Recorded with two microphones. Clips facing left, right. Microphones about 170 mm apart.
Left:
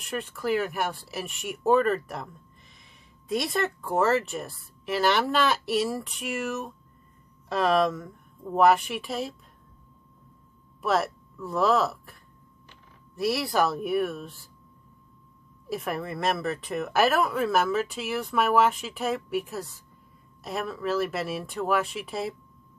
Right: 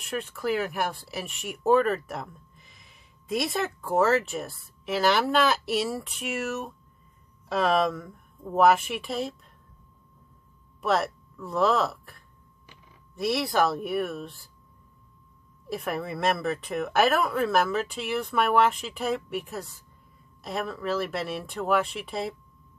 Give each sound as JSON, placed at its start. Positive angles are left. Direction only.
{"t": 0.0, "sound": "speech", "side_deg": 0}
{"t": 10.8, "sound": "speech", "side_deg": 0}
{"t": 15.7, "sound": "speech", "side_deg": 0}